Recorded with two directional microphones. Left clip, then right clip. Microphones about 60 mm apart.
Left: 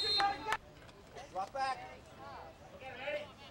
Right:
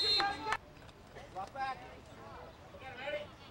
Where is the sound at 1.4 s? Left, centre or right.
Left.